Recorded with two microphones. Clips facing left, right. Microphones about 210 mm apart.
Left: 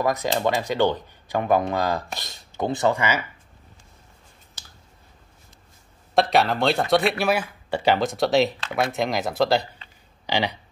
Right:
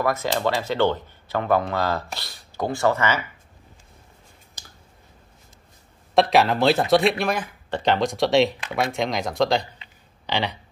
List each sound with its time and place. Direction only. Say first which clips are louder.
0.0 s speech: even; 15° left (ahead or behind)
6.3 s speech: right 3 dB; centre (ahead or behind)